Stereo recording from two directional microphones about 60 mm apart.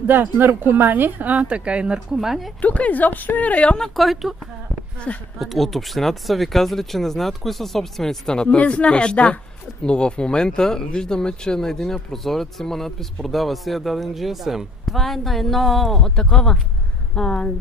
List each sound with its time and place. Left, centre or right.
0.0 s a woman's voice: right; by 2.0 s centre
2.1 s speech: centre
2.6 s speech: left
3.7 s speech: centre
5.1 s speech: left
5.4 s speech: centre